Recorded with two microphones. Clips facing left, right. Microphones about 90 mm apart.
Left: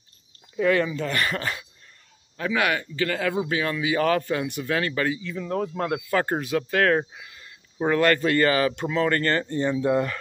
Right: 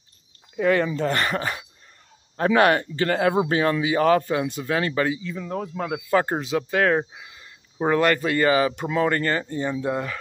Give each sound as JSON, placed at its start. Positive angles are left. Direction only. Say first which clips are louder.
{"t": 0.6, "sound": "speech", "louder": "right 1 dB", "side_deg": -30}
{"t": 2.3, "sound": "speech", "louder": "right 6 dB", "side_deg": -40}
{"t": 5.4, "sound": "speech", "louder": "left 2 dB", "side_deg": -5}
{"t": 6.0, "sound": "speech", "louder": "right 2 dB", "side_deg": -20}